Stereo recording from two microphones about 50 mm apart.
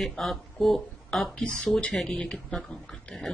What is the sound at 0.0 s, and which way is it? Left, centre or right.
Speech, centre.